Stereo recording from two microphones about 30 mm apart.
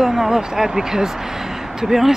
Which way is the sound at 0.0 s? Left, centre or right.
Centre.